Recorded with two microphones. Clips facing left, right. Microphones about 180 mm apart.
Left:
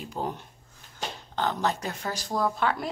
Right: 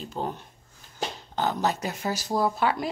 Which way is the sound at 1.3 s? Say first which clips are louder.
Right 1 dB; 10° right (ahead or behind).